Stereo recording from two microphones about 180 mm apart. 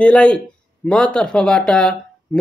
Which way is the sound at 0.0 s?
5° left (ahead or behind).